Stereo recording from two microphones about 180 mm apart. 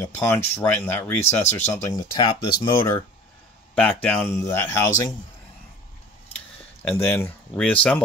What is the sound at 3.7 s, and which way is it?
Speech, 5° left (ahead or behind).